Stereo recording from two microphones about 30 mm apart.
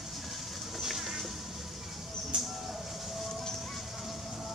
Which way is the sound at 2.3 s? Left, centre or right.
Right.